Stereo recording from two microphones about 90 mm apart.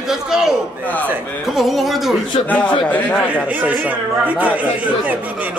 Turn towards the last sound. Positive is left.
turn(degrees=-15)  # may be behind; listen again after turning